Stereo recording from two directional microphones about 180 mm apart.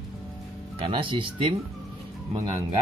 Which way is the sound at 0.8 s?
30° right (ahead or behind).